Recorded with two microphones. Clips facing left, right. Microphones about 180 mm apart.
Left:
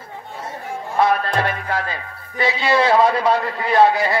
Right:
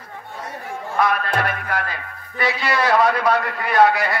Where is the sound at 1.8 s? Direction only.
25° left (ahead or behind).